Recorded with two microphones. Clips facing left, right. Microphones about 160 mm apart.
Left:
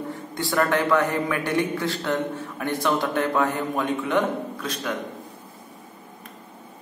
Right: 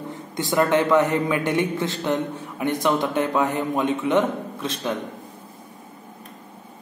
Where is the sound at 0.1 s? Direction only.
20° right (ahead or behind).